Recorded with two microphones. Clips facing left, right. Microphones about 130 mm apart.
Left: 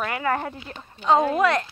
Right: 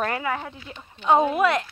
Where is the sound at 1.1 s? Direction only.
15° right (ahead or behind).